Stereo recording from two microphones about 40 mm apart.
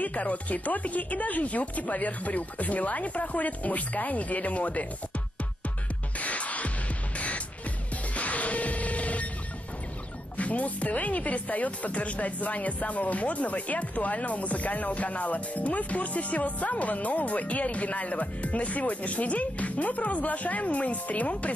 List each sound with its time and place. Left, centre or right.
0.0 s speech: left
6.1 s music: left
10.3 s speech: left